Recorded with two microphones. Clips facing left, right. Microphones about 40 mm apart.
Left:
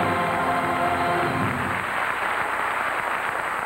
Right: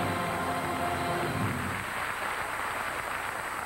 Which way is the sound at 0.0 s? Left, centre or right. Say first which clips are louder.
Left 8 dB; left.